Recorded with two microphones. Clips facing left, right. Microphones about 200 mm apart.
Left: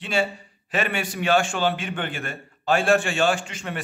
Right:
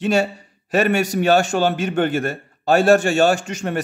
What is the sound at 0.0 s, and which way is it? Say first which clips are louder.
A man's voice: right 6 dB; 45° right (ahead or behind).